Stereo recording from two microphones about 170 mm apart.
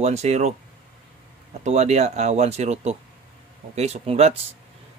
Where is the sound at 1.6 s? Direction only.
40° right (ahead or behind).